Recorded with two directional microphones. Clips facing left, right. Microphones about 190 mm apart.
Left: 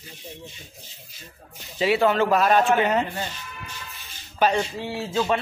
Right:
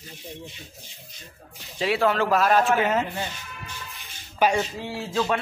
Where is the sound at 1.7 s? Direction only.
Centre (ahead or behind).